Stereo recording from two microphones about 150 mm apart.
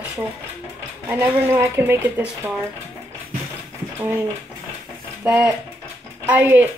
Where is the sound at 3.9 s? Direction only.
15° right (ahead or behind).